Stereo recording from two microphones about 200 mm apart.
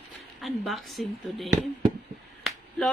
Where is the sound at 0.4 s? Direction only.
Centre (ahead or behind).